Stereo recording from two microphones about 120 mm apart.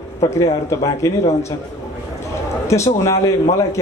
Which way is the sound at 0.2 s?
30° left (ahead or behind).